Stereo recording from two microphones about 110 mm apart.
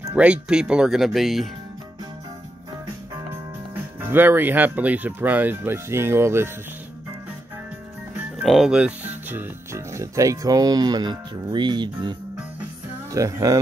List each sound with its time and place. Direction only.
0.1 s speech: 10° right (ahead or behind)
3.7 s speech: 20° right (ahead or behind)
8.5 s speech: 5° right (ahead or behind); by 12.2 s 40° right (ahead or behind)
13.1 s speech: 30° right (ahead or behind)